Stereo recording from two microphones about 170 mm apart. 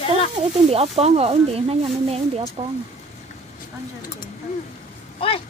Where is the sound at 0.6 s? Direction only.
35° right (ahead or behind).